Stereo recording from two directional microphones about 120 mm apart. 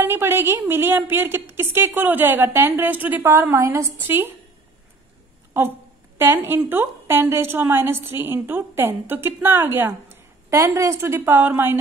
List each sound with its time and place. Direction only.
0.0 s a woman's voice: 20° right (ahead or behind)
6.1 s a woman's voice: 20° right (ahead or behind)